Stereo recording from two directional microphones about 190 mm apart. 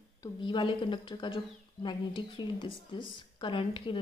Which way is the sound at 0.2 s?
25° left (ahead or behind).